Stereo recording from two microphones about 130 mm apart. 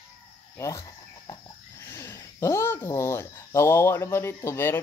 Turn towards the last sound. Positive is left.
turn(degrees=20)  # may be behind; listen again after turning